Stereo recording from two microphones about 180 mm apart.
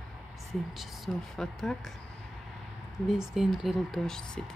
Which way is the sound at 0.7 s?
Centre (ahead or behind).